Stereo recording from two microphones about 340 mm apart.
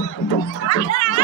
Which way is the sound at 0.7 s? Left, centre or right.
Left.